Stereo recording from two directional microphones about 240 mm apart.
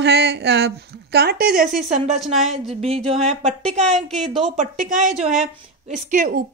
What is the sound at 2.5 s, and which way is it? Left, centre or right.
A woman's voice, right.